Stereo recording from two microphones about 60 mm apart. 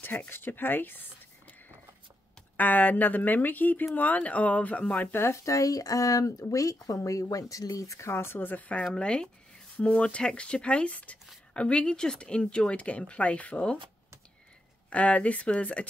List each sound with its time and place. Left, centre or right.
0.0 s speech: left
2.5 s speech: left
5.1 s speech: left
6.2 s speech: left
8.1 s speech: left
8.9 s speech: centre
14.9 s speech: left